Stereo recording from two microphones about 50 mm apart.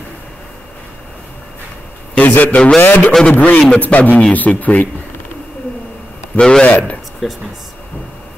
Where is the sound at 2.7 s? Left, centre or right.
Left.